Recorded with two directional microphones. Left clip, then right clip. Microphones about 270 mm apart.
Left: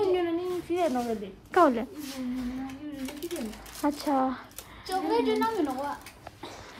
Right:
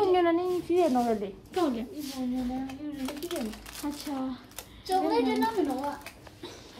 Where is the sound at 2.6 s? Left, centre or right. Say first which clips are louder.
Right 2 dB; centre.